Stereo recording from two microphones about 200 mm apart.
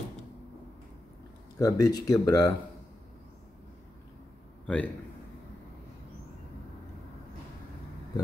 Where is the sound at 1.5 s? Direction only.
20° left (ahead or behind).